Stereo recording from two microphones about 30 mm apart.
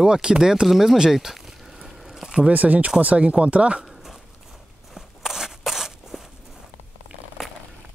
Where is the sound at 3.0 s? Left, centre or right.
Right.